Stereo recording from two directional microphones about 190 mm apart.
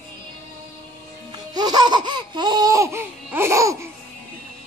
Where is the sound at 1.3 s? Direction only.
20° right (ahead or behind).